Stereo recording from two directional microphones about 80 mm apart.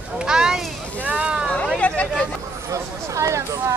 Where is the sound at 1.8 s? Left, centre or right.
Centre.